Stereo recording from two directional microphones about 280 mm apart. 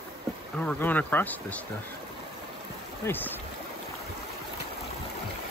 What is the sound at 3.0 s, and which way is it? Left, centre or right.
Speech, centre.